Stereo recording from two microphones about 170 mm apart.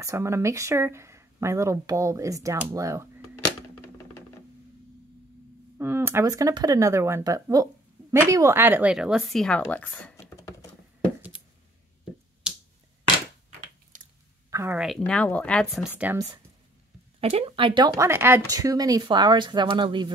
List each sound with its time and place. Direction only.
0.0 s speech: 15° right (ahead or behind)
5.8 s speech: 15° right (ahead or behind); by 10.3 s 5° left (ahead or behind)
12.4 s finger snapping: 5° right (ahead or behind)
13.9 s chewing: 50° right (ahead or behind)
14.5 s a sound: 15° right (ahead or behind)
14.8 s speech: centre (ahead or behind)
16.0 s speech: 10° right (ahead or behind)
17.2 s speech: 35° right (ahead or behind)